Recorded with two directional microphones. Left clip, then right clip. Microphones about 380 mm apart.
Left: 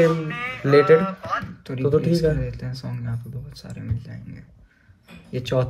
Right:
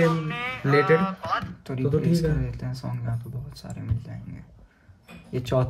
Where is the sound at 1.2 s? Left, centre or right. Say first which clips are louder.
Left 1 dB; right.